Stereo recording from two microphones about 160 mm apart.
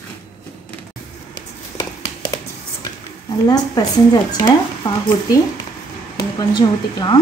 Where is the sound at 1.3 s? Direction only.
25° left (ahead or behind).